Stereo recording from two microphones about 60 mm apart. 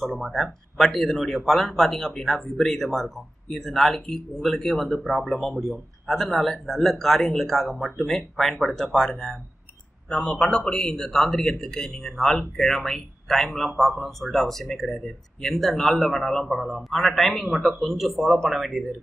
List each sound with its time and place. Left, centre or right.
0.0 s a man's voice: centre